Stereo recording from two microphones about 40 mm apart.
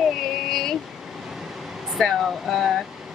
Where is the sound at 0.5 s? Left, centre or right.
Centre.